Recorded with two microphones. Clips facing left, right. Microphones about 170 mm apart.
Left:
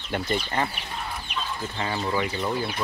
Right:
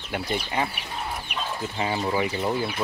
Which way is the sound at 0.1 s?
10° right (ahead or behind).